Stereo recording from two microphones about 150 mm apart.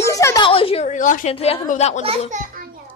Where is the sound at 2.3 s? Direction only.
60° right (ahead or behind).